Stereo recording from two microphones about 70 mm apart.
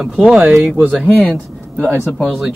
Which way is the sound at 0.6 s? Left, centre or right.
Right.